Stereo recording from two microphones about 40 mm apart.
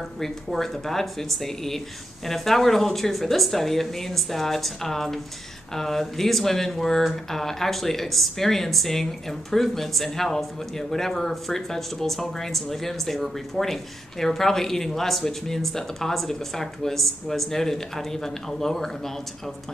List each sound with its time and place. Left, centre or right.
0.2 s a woman's voice: centre